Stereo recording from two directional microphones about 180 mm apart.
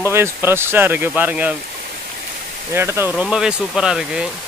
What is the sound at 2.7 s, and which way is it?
Speech, 15° right (ahead or behind).